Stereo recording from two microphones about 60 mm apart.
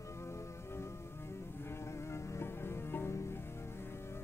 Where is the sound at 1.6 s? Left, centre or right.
Left.